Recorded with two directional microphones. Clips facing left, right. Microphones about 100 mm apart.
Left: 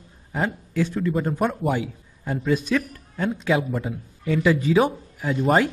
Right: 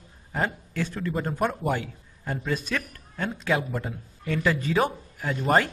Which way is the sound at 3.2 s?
Centre (ahead or behind).